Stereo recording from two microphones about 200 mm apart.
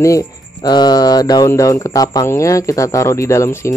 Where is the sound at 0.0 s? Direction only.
15° left (ahead or behind).